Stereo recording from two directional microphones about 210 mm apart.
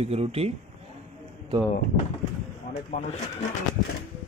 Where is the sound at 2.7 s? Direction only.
40° left (ahead or behind).